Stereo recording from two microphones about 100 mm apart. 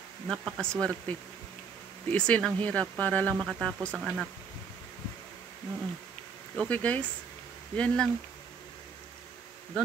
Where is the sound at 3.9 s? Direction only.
5° right (ahead or behind).